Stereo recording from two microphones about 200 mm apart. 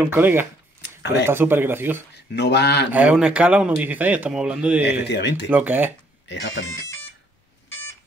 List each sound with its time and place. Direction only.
0.0 s speech: 10° right (ahead or behind)
2.3 s speech: 55° left (ahead or behind)
2.9 s speech: 5° right (ahead or behind)
5.0 s speech: 60° left (ahead or behind)
5.5 s speech: 10° right (ahead or behind)
6.2 s speech: 65° left (ahead or behind)